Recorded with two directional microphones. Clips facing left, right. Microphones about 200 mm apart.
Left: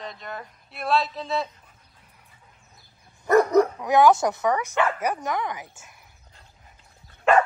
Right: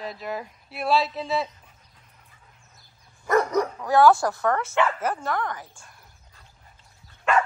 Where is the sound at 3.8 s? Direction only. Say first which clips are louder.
Even; 20° left (ahead or behind).